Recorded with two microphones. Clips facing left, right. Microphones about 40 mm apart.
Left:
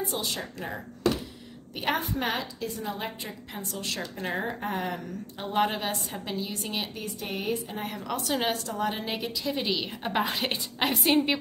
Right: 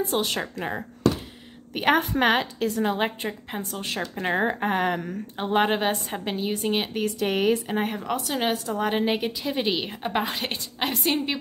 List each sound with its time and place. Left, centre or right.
0.0 s speech: right
2.0 s a woman's voice: right
3.3 s a woman's voice: right
7.0 s speech: right
8.2 s a woman's voice: centre
8.7 s a woman's voice: right
10.0 s a woman's voice: centre